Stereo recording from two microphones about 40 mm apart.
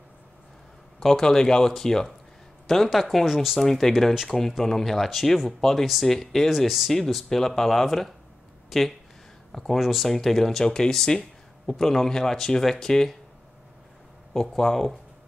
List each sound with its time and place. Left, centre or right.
0.9 s speech: centre
7.2 s speech: centre
8.6 s a sound: centre
9.5 s speech: centre
10.6 s speech: centre
14.3 s speech: centre